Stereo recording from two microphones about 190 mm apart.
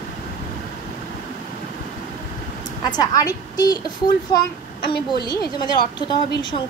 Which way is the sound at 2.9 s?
20° left (ahead or behind).